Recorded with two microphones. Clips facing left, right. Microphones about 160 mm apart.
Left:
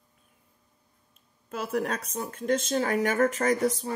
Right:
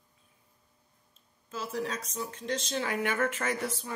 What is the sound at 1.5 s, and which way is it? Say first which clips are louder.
Speech: left 5 dB; 60° left (ahead or behind).